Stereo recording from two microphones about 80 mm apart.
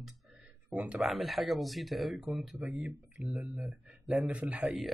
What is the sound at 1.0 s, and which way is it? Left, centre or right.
Speech, centre.